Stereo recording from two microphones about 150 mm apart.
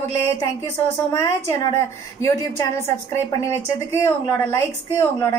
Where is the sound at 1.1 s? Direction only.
20° left (ahead or behind).